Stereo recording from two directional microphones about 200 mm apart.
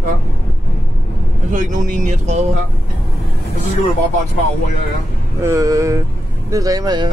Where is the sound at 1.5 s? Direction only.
40° right (ahead or behind).